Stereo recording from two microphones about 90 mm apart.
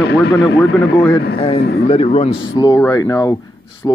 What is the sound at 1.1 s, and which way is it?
Speech, 90° left.